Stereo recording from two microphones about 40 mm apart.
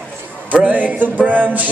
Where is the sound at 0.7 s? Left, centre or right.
Right.